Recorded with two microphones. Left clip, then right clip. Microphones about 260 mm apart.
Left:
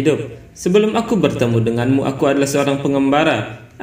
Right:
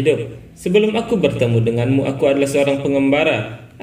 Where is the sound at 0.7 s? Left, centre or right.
Left.